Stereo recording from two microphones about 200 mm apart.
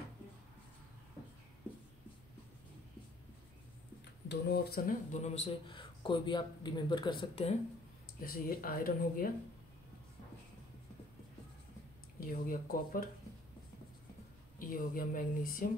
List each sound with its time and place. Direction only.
4.3 s speech: 55° left (ahead or behind); by 7.5 s 25° left (ahead or behind)
8.2 s speech: 45° left (ahead or behind)
12.2 s speech: 45° left (ahead or behind)
14.6 s speech: 45° left (ahead or behind)